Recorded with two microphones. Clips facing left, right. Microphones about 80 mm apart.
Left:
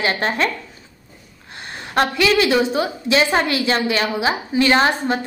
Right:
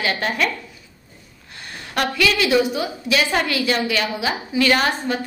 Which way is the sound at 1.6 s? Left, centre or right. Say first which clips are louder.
Left 4 dB; left.